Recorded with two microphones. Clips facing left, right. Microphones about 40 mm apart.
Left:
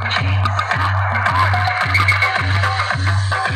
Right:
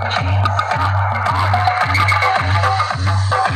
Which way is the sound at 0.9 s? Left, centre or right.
Left.